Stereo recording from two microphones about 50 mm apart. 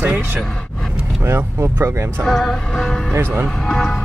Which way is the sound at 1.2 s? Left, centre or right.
Right.